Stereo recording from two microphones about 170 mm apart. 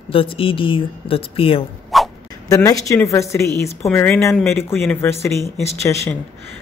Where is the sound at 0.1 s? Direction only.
35° left (ahead or behind).